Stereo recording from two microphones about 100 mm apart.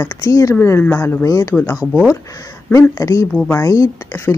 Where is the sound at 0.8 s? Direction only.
20° left (ahead or behind).